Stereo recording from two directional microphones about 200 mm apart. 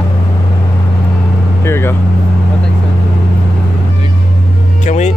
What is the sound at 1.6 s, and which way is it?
Speech, 10° left (ahead or behind).